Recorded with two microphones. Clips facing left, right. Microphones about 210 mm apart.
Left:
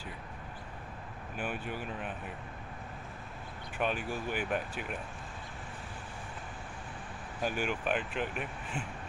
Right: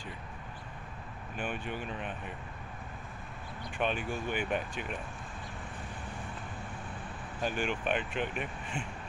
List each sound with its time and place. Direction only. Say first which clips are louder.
1.3 s speech: even; 5° left (ahead or behind)
3.7 s speech: right 1 dB; 5° left (ahead or behind)
7.4 s speech: even; 5° left (ahead or behind)